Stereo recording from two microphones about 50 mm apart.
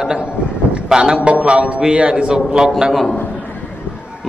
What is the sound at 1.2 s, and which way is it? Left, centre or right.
A man's voice, right.